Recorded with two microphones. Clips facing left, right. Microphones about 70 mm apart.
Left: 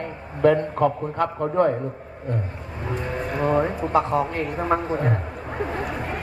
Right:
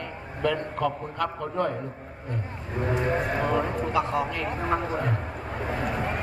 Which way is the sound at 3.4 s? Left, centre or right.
Left.